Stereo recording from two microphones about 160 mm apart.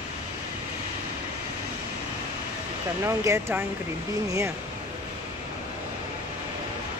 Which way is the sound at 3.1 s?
15° right (ahead or behind).